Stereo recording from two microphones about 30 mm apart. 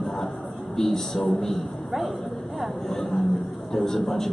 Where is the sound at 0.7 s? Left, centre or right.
Centre.